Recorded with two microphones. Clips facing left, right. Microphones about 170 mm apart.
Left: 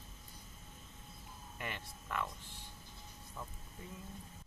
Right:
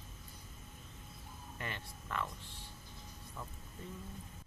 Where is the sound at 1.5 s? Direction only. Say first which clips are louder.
Even; 10° left (ahead or behind).